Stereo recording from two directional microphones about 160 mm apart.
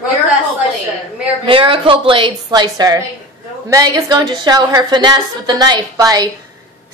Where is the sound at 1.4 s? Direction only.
35° right (ahead or behind).